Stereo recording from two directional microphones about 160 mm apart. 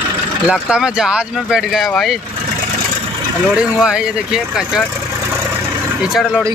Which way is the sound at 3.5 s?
5° right (ahead or behind).